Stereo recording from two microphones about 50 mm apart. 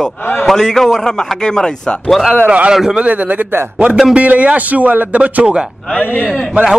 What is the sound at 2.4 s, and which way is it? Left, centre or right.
Speech, right.